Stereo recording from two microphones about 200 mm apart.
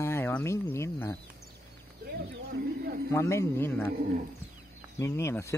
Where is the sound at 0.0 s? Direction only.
10° left (ahead or behind).